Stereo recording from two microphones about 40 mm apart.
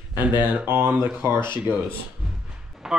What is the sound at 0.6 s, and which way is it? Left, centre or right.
Speech, right.